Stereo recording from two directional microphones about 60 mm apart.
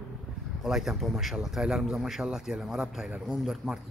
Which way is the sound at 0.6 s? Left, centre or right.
Centre.